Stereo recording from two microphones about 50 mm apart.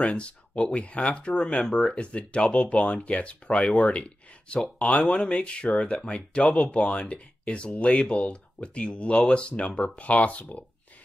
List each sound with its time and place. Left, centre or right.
0.0 s speech: left
2.4 s speech: centre
2.7 s speech: left